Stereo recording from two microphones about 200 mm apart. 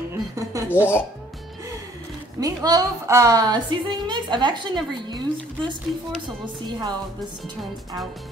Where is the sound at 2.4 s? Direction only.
20° right (ahead or behind).